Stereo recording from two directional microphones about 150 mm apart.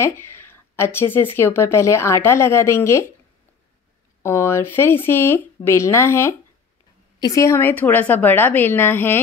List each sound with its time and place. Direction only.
0.0 s speech: 15° left (ahead or behind)
4.2 s speech: 15° left (ahead or behind)